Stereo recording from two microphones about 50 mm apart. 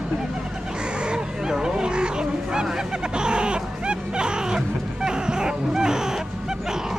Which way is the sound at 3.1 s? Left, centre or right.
Centre.